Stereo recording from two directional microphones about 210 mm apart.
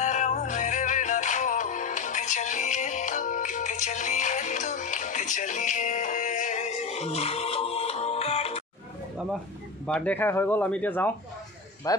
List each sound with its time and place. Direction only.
0.0 s music: 35° left (ahead or behind)
9.8 s speech: 5° left (ahead or behind)